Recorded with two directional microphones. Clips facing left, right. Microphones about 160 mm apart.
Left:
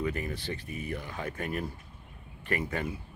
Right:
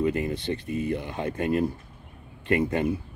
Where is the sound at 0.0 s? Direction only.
20° right (ahead or behind).